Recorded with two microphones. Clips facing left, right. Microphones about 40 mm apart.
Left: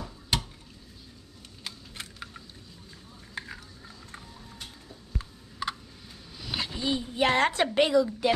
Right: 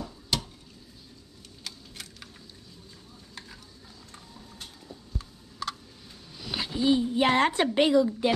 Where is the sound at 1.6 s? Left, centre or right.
Left.